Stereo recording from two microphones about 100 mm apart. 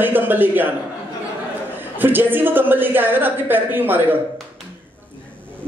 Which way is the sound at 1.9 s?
20° right (ahead or behind).